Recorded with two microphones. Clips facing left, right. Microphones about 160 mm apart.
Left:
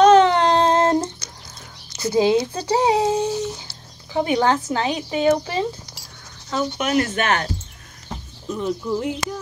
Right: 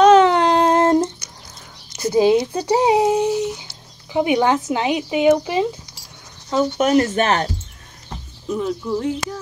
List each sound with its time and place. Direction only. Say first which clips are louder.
0.0 s a sound: right 1 dB; 5° right (ahead or behind)
2.0 s speech: right 2 dB; 15° right (ahead or behind)
6.8 s speech: right 5 dB; 35° right (ahead or behind)
8.5 s speech: right 1 dB; centre (ahead or behind)